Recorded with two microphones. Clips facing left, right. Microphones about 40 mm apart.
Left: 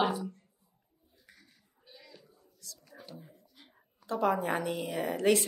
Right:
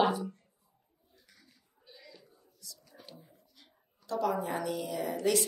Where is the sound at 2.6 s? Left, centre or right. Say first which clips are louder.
Left 2 dB; left.